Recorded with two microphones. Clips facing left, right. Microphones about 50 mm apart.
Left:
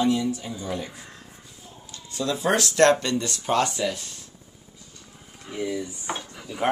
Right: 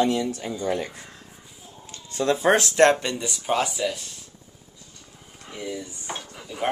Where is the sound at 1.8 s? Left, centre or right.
Right; by 4.1 s centre.